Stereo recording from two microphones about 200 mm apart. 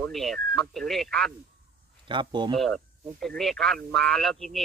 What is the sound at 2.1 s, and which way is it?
Speech, 25° right (ahead or behind).